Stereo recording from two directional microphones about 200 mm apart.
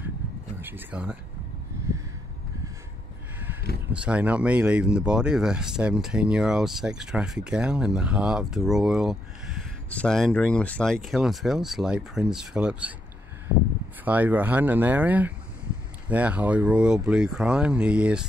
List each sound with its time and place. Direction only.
0.6 s speech: 10° right (ahead or behind)
3.9 s speech: 5° right (ahead or behind)
14.0 s speech: 10° right (ahead or behind)